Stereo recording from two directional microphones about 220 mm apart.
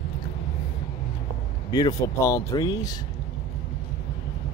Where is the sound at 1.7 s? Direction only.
15° left (ahead or behind).